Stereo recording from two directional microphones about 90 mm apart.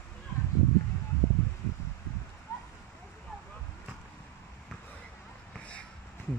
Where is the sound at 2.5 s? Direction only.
35° left (ahead or behind).